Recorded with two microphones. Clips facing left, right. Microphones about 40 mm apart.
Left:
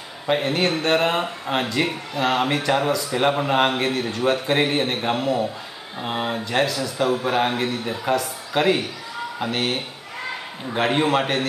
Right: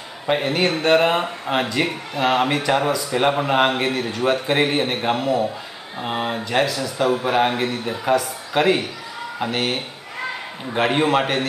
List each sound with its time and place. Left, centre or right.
0.3 s speech: centre